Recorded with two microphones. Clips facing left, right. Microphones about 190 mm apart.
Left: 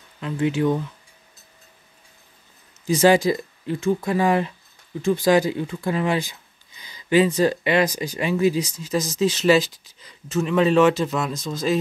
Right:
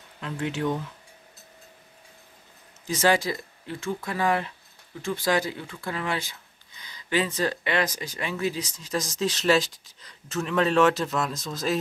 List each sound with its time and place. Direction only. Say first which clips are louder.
0.2 s speech: left 7 dB; centre (ahead or behind)
2.9 s speech: left 7 dB; 15° left (ahead or behind); by 11.8 s centre (ahead or behind)